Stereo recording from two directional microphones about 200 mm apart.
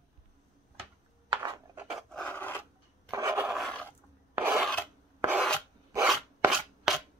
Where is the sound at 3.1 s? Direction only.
15° right (ahead or behind).